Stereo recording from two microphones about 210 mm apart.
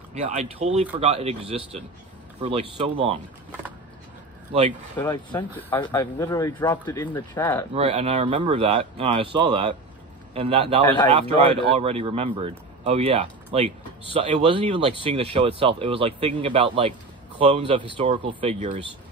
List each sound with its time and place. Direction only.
0.1 s speech: 30° right (ahead or behind)
4.9 s speech: 10° left (ahead or behind)
7.7 s speech: 25° right (ahead or behind)